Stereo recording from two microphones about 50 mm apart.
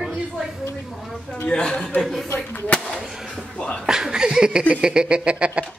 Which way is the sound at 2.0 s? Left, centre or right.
Centre.